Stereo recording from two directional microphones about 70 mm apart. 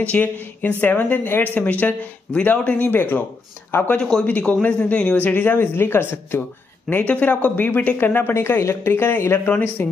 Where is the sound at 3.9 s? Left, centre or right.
Centre.